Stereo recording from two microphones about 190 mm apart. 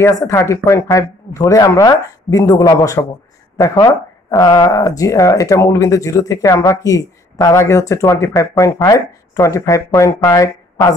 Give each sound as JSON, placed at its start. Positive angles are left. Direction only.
{"t": 0.0, "sound": "speech", "side_deg": 15}